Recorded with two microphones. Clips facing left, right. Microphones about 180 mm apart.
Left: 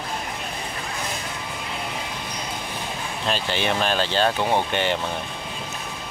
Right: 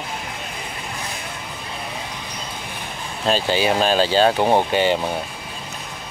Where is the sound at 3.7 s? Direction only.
35° right (ahead or behind).